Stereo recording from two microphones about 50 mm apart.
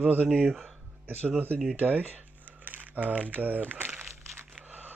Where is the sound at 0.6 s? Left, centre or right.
Right.